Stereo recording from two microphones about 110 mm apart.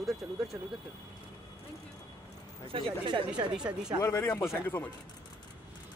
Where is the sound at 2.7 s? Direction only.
50° right (ahead or behind).